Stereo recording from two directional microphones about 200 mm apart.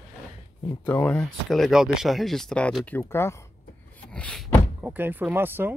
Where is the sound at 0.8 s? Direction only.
10° left (ahead or behind).